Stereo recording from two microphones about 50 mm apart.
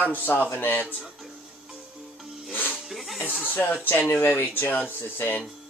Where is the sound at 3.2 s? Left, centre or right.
Centre.